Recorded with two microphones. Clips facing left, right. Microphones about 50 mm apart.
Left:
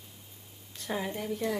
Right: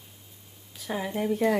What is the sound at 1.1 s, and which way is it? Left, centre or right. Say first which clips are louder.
Speech: right 8 dB; right.